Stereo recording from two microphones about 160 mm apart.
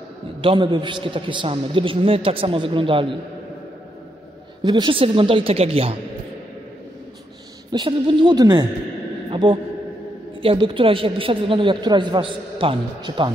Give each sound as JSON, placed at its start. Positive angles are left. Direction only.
{"t": 0.4, "sound": "a man's voice", "side_deg": -30}
{"t": 4.6, "sound": "a man's voice", "side_deg": -30}
{"t": 7.7, "sound": "a man's voice", "side_deg": -30}